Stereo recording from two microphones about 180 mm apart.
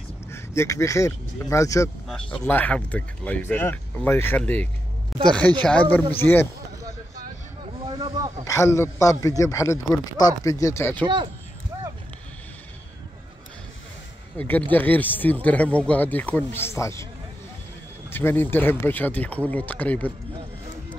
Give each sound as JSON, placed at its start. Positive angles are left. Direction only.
{"t": 0.3, "sound": "speech", "side_deg": 15}
{"t": 7.8, "sound": "a sound", "side_deg": -20}
{"t": 8.5, "sound": "speech", "side_deg": 15}
{"t": 11.7, "sound": "a sound", "side_deg": -20}
{"t": 14.3, "sound": "speech", "side_deg": 10}
{"t": 18.1, "sound": "speech", "side_deg": 10}